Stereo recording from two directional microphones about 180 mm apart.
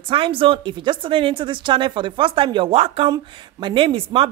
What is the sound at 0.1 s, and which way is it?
Speech, 30° right (ahead or behind).